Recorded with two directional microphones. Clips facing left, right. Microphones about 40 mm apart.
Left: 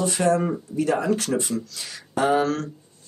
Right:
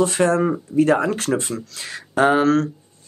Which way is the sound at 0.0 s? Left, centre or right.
Right.